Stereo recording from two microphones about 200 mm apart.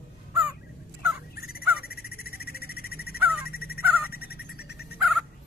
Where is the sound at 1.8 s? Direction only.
50° left (ahead or behind).